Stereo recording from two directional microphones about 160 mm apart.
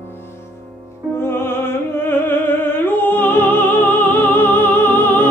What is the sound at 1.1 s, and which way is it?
Music, 15° left (ahead or behind).